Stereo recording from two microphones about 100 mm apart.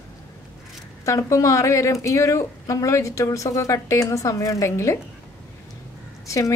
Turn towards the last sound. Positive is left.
turn(degrees=30)  # may be behind; listen again after turning